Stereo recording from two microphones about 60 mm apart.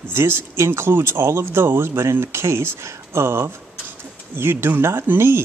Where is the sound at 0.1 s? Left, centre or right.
Right.